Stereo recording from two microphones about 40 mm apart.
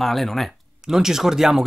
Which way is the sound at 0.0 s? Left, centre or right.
Centre.